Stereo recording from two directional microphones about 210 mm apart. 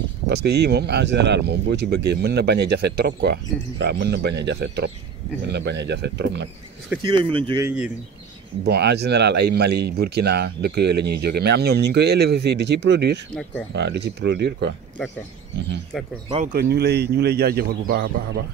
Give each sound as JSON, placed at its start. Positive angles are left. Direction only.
{"t": 0.3, "sound": "speech", "side_deg": -50}
{"t": 7.0, "sound": "speech", "side_deg": -20}
{"t": 7.6, "sound": "speech", "side_deg": -5}
{"t": 8.6, "sound": "speech", "side_deg": -50}
{"t": 13.3, "sound": "speech", "side_deg": 5}
{"t": 13.7, "sound": "speech", "side_deg": -55}
{"t": 16.5, "sound": "speech", "side_deg": -50}